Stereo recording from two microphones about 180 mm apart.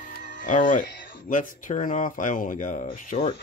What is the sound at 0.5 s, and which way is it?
Speech, 45° left (ahead or behind).